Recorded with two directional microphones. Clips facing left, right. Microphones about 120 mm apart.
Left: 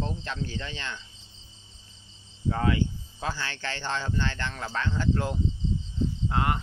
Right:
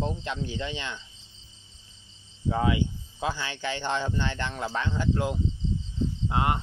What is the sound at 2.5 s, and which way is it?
Speech, 15° right (ahead or behind).